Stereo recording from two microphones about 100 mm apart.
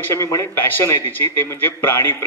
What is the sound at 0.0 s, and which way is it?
Speech, 30° left (ahead or behind).